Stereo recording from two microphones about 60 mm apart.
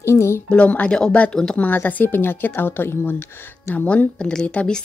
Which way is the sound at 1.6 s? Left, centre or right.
Left.